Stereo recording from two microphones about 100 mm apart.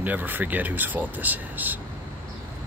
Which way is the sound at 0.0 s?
15° right (ahead or behind).